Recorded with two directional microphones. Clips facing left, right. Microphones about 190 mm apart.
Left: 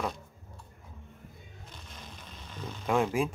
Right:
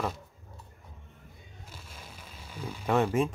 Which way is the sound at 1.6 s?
5° right (ahead or behind).